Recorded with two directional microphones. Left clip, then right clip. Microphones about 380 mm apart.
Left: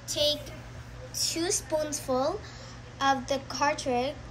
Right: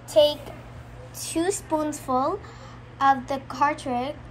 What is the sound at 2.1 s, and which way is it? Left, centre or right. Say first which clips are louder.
Speech: right 4 dB; right.